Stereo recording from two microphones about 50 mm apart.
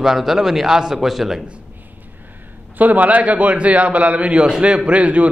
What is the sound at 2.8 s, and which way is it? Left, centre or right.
A man's voice, right.